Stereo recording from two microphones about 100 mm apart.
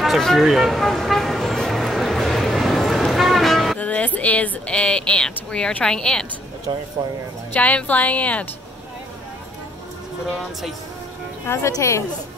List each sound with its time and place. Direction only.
0.0 s vehicle: centre (ahead or behind)
3.7 s speech: 15° left (ahead or behind)
6.7 s speech: 45° right (ahead or behind)
7.5 s speech: 15° left (ahead or behind)
11.4 s speech: 30° left (ahead or behind)